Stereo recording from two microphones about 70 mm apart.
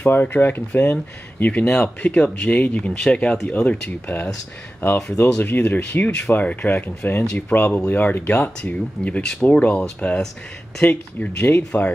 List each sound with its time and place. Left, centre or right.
0.0 s speech: left
5.4 s speech: left